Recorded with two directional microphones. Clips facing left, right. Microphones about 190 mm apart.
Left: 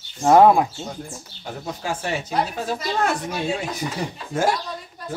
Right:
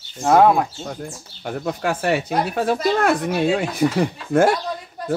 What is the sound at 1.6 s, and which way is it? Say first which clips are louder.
Speech: right 6 dB; 60° right (ahead or behind).